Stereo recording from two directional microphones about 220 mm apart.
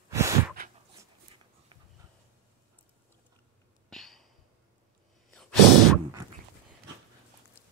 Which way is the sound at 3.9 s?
Centre (ahead or behind).